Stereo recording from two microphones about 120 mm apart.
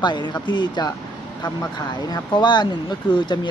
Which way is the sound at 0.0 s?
40° left (ahead or behind).